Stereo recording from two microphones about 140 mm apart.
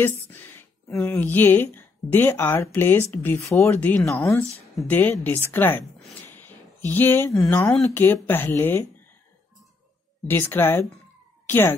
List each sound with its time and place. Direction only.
0.0 s speech: 15° left (ahead or behind)
4.1 s speech: 20° left (ahead or behind)
10.2 s speech: 15° left (ahead or behind)